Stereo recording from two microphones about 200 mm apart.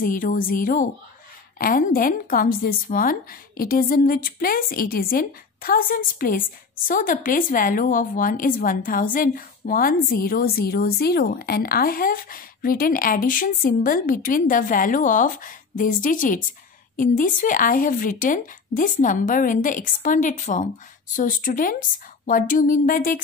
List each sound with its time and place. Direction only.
0.0 s a woman's voice: 45° left (ahead or behind)